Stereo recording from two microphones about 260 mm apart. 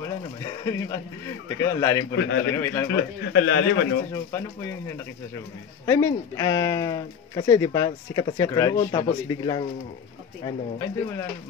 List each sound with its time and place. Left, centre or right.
0.0 s speech: centre
2.1 s a man's voice: left
2.5 s speech: centre
2.9 s speech: left
4.3 s speech: centre